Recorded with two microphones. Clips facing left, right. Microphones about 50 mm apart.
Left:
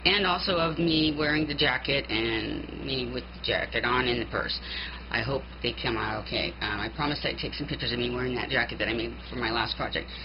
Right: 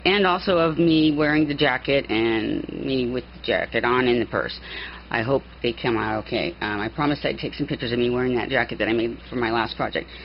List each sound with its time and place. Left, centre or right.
0.1 s speech: centre
2.0 s speech: centre
3.0 s speech: centre
3.6 s speech: centre
4.3 s speech: centre
5.6 s speech: centre